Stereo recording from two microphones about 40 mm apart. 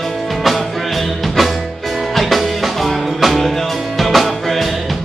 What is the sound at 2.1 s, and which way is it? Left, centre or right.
Music, centre.